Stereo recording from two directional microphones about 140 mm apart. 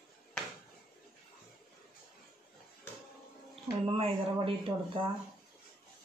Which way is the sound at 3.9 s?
40° right (ahead or behind).